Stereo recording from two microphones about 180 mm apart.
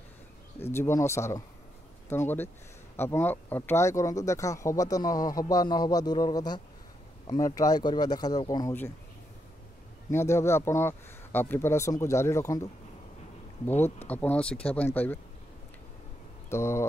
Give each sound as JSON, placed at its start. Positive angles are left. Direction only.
{"t": 0.6, "sound": "speech", "side_deg": 15}
{"t": 10.1, "sound": "speech", "side_deg": 15}
{"t": 13.8, "sound": "speech", "side_deg": 10}
{"t": 16.4, "sound": "speech", "side_deg": 15}